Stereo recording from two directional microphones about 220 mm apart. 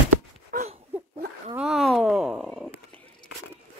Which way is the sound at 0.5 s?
40° right (ahead or behind).